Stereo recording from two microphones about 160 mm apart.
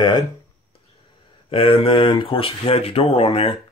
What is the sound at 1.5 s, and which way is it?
Speech, 35° left (ahead or behind).